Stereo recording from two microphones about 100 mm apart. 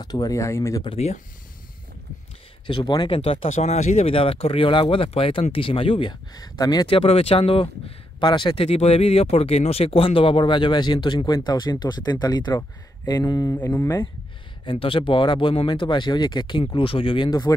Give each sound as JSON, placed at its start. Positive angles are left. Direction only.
{"t": 0.0, "sound": "speech", "side_deg": 40}
{"t": 0.8, "sound": "speech", "side_deg": 90}
{"t": 2.6, "sound": "speech", "side_deg": 50}
{"t": 3.2, "sound": "speech", "side_deg": 80}
{"t": 6.3, "sound": "speech", "side_deg": 40}
{"t": 6.9, "sound": "speech", "side_deg": 80}
{"t": 8.2, "sound": "speech", "side_deg": 50}
{"t": 13.6, "sound": "speech", "side_deg": 20}
{"t": 14.7, "sound": "speech", "side_deg": 60}